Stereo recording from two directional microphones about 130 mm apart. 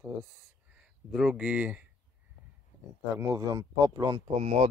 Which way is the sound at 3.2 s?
25° right (ahead or behind).